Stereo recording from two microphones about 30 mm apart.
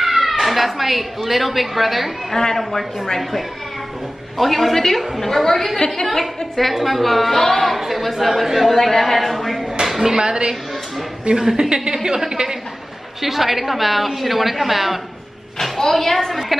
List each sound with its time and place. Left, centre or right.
0.0 s speech: centre
2.5 s a woman's voice: centre
3.2 s a woman's voice: centre
6.0 s a woman's voice: centre
8.0 s a woman's voice: centre
10.0 s a woman's voice: right
11.7 s a woman's voice: right
13.2 s a woman's voice: centre
15.8 s a woman's voice: centre